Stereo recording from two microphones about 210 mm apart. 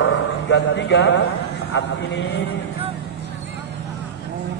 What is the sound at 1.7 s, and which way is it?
Speech, 60° left (ahead or behind).